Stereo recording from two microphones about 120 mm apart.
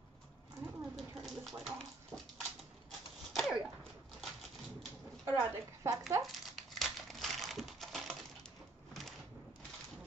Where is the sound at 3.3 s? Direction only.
Centre (ahead or behind).